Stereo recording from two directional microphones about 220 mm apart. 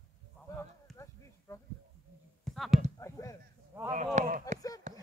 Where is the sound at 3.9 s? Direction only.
35° right (ahead or behind).